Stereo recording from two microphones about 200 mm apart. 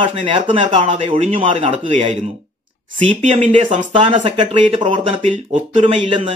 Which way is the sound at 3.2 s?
35° right (ahead or behind).